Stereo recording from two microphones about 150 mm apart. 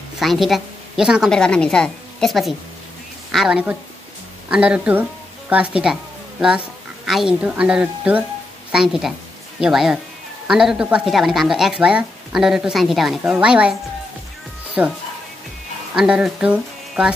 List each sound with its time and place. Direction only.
0.2 s speech: centre (ahead or behind)
1.3 s a woman's voice: 5° left (ahead or behind)
7.1 s a woman's voice: 5° right (ahead or behind)
14.8 s a woman's voice: 10° right (ahead or behind)